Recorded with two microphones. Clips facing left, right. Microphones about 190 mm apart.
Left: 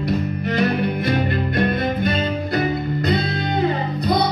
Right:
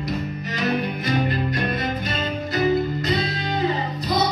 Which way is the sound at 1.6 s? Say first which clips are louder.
Left 5 dB; 60° left (ahead or behind).